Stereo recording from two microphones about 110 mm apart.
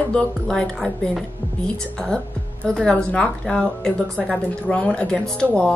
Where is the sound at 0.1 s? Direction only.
10° left (ahead or behind).